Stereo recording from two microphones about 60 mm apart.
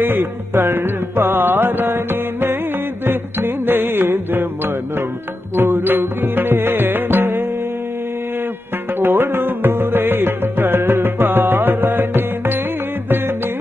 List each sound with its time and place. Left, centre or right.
0.0 s music: right
5.6 s music: right
9.0 s music: right